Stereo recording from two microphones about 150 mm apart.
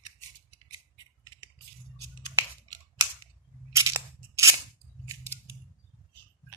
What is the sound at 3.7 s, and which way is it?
Single-lens reflex camera, 20° right (ahead or behind).